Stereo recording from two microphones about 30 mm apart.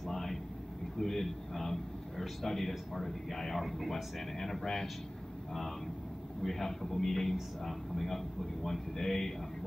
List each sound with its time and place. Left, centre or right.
0.0 s vehicle: centre
0.9 s a man's voice: centre
3.6 s speech: centre
3.9 s speech: centre
6.4 s speech: centre